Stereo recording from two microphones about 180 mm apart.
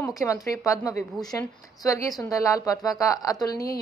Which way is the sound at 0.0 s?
15° left (ahead or behind).